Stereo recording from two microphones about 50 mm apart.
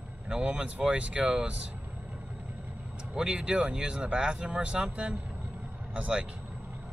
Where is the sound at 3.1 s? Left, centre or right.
Centre.